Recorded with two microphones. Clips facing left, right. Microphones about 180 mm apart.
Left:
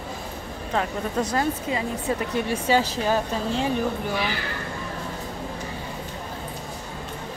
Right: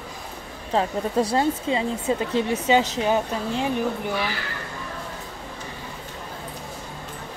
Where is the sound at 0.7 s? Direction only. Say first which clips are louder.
Right 3 dB; 30° right (ahead or behind).